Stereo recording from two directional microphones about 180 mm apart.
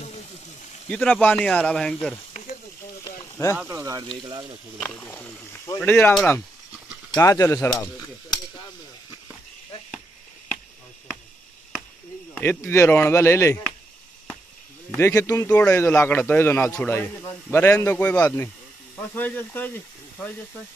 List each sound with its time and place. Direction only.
0.8 s speech: 5° left (ahead or behind)
3.2 s a sound: 15° left (ahead or behind)
3.5 s speech: 15° right (ahead or behind)
4.7 s speech: 10° left (ahead or behind)
12.4 s speech: 10° left (ahead or behind)
15.0 s speech: 15° left (ahead or behind)